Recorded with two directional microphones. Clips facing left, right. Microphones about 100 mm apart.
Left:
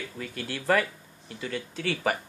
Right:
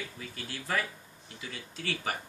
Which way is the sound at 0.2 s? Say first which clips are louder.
Left 7 dB; 75° left (ahead or behind).